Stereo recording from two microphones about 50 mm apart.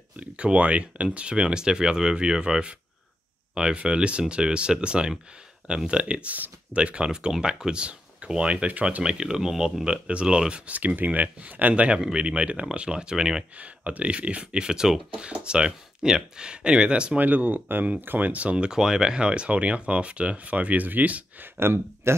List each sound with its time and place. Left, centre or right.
0.2 s speech: right
3.7 s speech: right
9.0 s speech: centre
10.7 s speech: right; by 13.5 s centre
13.6 s speech: right
17.2 s speech: right
18.7 s speech: centre; by 21.5 s right
21.5 s speech: right